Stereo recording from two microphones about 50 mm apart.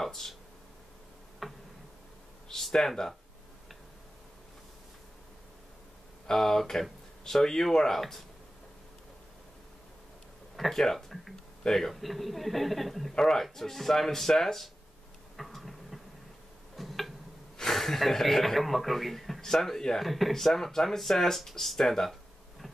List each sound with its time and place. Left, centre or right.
0.0 s speech: centre
1.4 s tick-tock: centre
2.4 s speech: centre
6.2 s speech: centre
10.5 s a man's voice: centre
15.3 s a sound: centre
16.7 s tick-tock: centre
17.6 s a man's voice: centre